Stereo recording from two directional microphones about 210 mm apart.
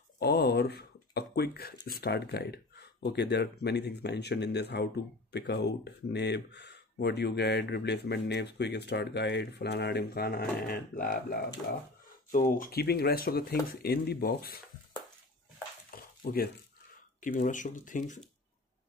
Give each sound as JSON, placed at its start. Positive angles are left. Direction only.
{"t": 0.2, "sound": "speech", "side_deg": 50}
{"t": 15.9, "sound": "stir", "side_deg": 45}
{"t": 17.2, "sound": "speech", "side_deg": 40}